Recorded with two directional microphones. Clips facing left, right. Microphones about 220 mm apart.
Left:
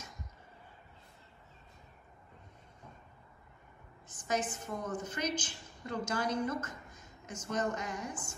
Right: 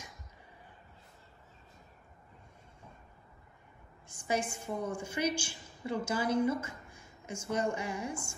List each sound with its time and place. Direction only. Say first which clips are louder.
4.1 s a woman's voice: right 1 dB; 10° right (ahead or behind)